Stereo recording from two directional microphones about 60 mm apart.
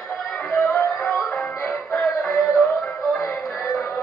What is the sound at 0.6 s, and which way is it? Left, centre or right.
Music, left.